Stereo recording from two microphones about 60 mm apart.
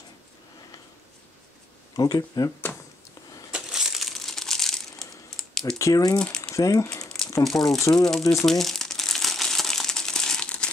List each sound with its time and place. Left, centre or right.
2.0 s speech: left
3.5 s crushing: centre
5.8 s speech: left
6.1 s speech: centre
6.5 s speech: left
7.9 s speech: centre
8.2 s speech: left
8.5 s crumpling: centre